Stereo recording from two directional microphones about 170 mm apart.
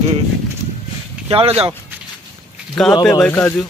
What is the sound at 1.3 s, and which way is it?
Speech, 35° right (ahead or behind).